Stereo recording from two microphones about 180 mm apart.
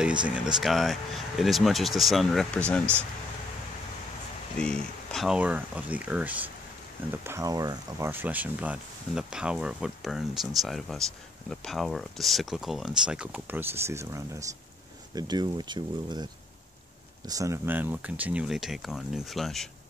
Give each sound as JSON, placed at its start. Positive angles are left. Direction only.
{"t": 0.5, "sound": "speech", "side_deg": 0}
{"t": 4.6, "sound": "speech", "side_deg": 5}
{"t": 17.3, "sound": "speech", "side_deg": -15}